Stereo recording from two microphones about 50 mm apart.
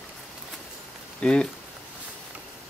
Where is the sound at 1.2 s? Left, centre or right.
Centre.